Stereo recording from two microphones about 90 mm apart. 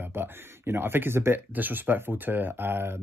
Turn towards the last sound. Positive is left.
turn(degrees=-25)  # may be behind; listen again after turning